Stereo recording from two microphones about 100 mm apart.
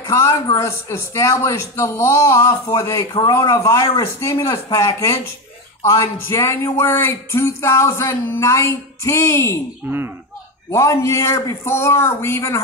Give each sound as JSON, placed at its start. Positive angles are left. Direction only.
{"t": 0.0, "sound": "a man's voice", "side_deg": 30}
{"t": 9.8, "sound": "speech", "side_deg": -20}
{"t": 10.7, "sound": "speech", "side_deg": 30}